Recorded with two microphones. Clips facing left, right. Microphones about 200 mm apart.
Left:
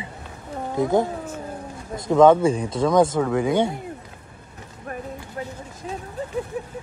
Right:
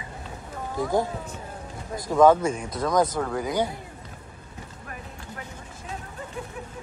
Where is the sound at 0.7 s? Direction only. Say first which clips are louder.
Left 5 dB; 20° left (ahead or behind).